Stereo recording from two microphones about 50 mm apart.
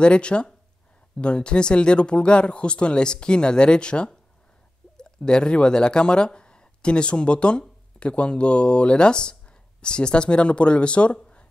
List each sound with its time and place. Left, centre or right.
0.0 s speech: left